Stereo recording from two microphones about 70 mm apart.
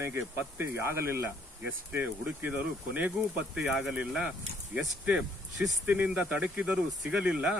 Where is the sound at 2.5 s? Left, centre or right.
Centre.